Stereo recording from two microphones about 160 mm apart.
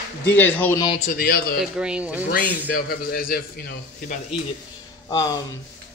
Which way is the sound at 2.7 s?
70° left (ahead or behind).